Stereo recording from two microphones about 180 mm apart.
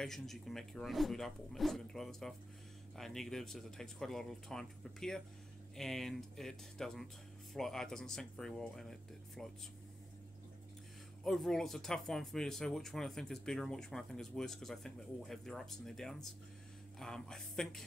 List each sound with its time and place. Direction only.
0.0 s speech: centre (ahead or behind)
11.2 s speech: centre (ahead or behind)